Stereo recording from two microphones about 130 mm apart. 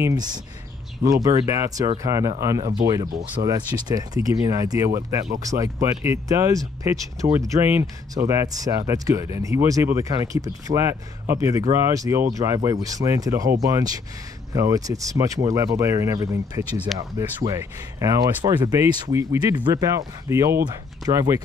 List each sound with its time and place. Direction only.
0.0 s speech: 30° right (ahead or behind)
16.9 s speech: centre (ahead or behind)
17.6 s speech: 25° right (ahead or behind)
18.4 s speech: 35° right (ahead or behind)